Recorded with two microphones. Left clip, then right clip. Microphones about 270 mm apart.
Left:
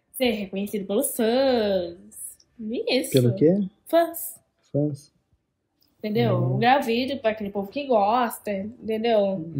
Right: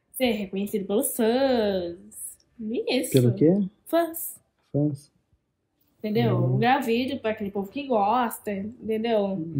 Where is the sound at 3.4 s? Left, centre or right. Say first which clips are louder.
Left 2 dB; right.